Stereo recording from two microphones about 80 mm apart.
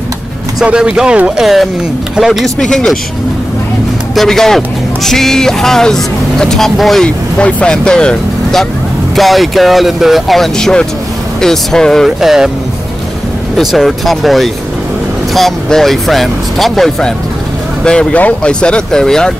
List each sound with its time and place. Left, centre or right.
0.7 s speech: centre
1.4 s speech: centre
2.7 s speech: centre
4.1 s speech: centre
12.2 s speech: centre
13.6 s speech: centre
17.8 s speech: centre